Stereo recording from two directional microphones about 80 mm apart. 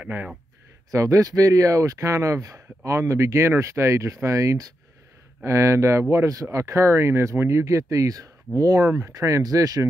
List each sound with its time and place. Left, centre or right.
0.0 s speech: right
0.9 s speech: right